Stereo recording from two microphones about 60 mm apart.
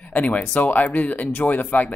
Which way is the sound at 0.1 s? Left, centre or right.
Left.